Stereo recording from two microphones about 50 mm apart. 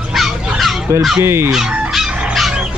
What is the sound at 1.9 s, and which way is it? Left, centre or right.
Fowl, centre.